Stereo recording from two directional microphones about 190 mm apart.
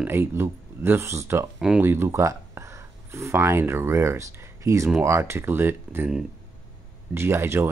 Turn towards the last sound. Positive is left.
turn(degrees=-10)  # may be behind; listen again after turning